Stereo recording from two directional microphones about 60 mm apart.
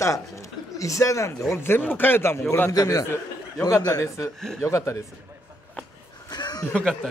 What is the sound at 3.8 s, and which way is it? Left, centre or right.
Speech, left.